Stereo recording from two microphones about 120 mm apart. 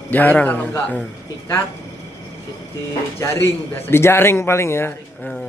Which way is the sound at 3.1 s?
20° left (ahead or behind).